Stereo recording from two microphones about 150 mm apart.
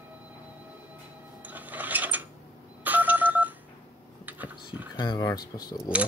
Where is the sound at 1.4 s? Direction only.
10° right (ahead or behind).